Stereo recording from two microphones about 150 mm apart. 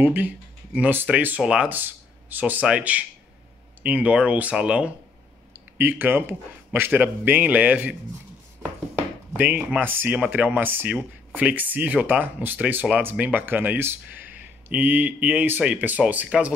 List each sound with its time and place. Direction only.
0.0 s speech: 10° right (ahead or behind)
8.9 s speech: 10° right (ahead or behind)